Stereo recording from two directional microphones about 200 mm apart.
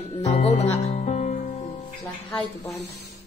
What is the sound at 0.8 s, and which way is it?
Music, 35° left (ahead or behind).